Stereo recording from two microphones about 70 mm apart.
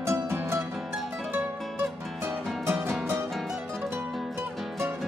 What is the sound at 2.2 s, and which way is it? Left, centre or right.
Music, right.